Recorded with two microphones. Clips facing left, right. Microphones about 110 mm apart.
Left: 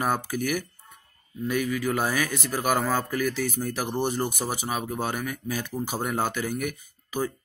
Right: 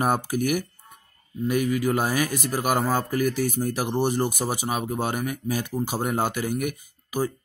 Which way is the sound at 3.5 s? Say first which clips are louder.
Right 3 dB; 15° right (ahead or behind).